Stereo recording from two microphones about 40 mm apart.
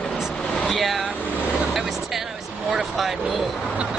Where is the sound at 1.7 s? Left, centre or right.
Centre.